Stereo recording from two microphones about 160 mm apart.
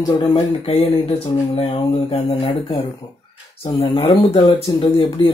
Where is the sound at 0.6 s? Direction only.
40° left (ahead or behind).